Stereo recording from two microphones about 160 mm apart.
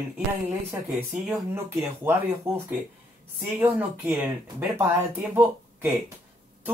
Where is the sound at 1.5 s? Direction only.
15° right (ahead or behind).